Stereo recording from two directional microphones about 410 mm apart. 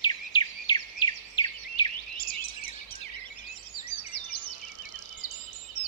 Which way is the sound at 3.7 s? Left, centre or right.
Left.